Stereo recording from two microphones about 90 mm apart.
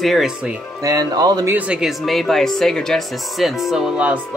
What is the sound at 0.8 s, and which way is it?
Speech, 45° right (ahead or behind).